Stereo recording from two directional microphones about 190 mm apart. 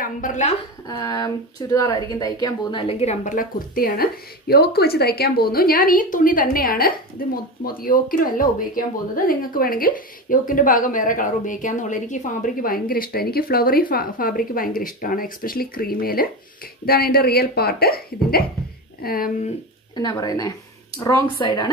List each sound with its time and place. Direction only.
0.0 s a woman's voice: 45° left (ahead or behind)
0.8 s a woman's voice: 20° left (ahead or behind); by 19.5 s 50° left (ahead or behind)
20.0 s speech: 20° left (ahead or behind)